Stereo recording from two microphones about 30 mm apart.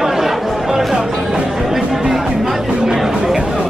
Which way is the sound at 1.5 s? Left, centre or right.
Centre.